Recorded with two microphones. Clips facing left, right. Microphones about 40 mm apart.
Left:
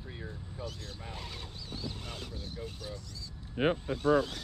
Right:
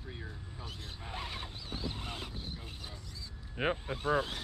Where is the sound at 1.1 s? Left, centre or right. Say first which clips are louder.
Right 6 dB; right.